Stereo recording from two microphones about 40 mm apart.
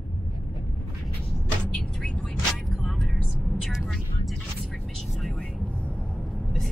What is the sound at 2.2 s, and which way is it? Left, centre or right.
Vehicle, centre.